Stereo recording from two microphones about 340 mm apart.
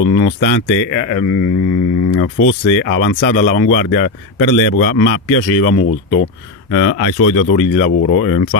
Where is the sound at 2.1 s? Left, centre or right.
Left.